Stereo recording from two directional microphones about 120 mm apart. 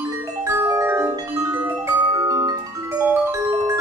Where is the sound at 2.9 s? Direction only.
15° right (ahead or behind).